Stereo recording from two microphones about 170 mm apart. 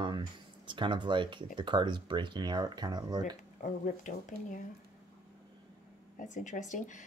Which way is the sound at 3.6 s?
50° left (ahead or behind).